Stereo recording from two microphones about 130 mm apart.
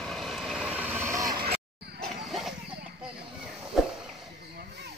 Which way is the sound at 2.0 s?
Centre (ahead or behind).